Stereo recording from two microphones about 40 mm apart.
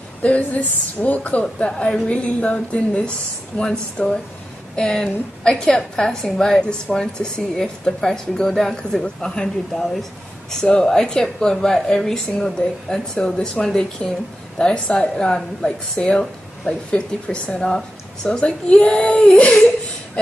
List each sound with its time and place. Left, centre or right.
0.2 s a woman's voice: left
3.5 s a woman's voice: centre
9.0 s speech: centre
9.7 s a woman's voice: centre
15.0 s speech: centre